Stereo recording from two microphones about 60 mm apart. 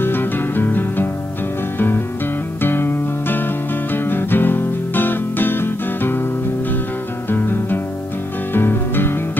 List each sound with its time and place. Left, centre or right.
0.0 s music: left
2.6 s music: left
7.2 s music: left